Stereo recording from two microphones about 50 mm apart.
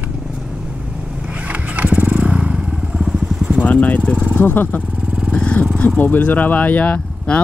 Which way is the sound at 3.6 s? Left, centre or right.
Left.